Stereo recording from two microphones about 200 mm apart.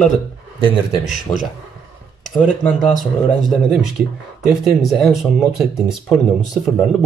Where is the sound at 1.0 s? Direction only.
35° left (ahead or behind).